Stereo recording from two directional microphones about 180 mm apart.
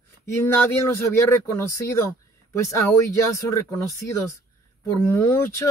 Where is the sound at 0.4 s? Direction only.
15° left (ahead or behind).